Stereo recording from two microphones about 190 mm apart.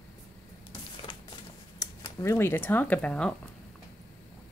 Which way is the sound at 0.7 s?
30° left (ahead or behind).